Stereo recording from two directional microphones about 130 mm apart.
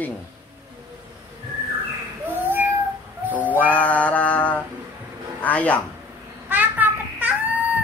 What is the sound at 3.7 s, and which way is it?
Mantra, 10° left (ahead or behind).